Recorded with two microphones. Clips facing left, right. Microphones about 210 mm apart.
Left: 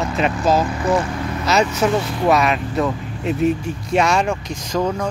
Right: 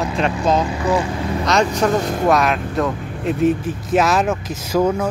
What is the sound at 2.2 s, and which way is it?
Speech, centre (ahead or behind).